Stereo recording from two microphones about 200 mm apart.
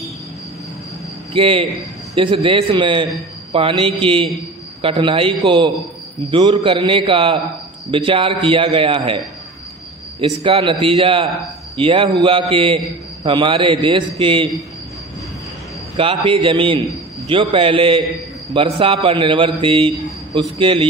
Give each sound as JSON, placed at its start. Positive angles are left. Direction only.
{"t": 1.3, "sound": "a man's voice", "side_deg": -30}
{"t": 6.3, "sound": "a man's voice", "side_deg": -25}
{"t": 10.2, "sound": "a man's voice", "side_deg": -30}
{"t": 16.0, "sound": "a man's voice", "side_deg": -25}